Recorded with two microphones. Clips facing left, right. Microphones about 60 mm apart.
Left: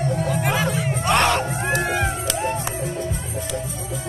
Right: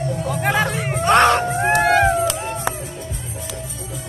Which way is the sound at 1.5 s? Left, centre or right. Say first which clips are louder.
Right 7 dB; right.